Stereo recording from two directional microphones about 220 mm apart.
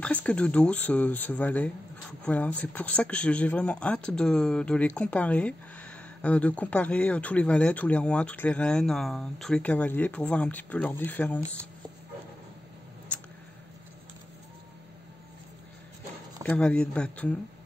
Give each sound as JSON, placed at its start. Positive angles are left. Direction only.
{"t": 0.0, "sound": "speech", "side_deg": 5}
{"t": 16.4, "sound": "speech", "side_deg": 5}